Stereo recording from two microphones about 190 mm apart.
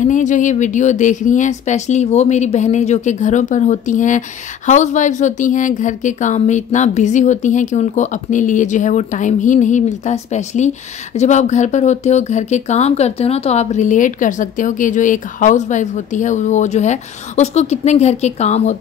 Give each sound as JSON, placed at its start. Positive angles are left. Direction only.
{"t": 0.0, "sound": "a woman's voice", "side_deg": 40}